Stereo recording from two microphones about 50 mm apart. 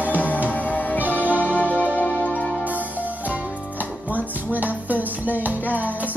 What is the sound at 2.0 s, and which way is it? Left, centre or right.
Music, left.